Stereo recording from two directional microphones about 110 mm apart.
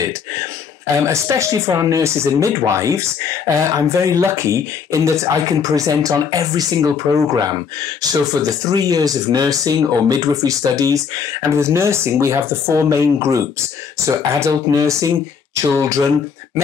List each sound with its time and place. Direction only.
1.0 s speech: 25° right (ahead or behind)